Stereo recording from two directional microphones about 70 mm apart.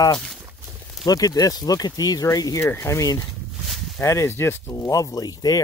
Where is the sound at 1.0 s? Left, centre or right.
Left.